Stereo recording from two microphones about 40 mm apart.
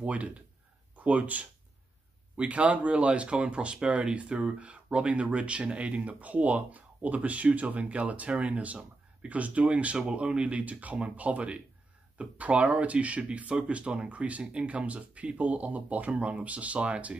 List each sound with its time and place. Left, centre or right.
0.0 s speech: right
9.9 s speech: right
14.4 s speech: right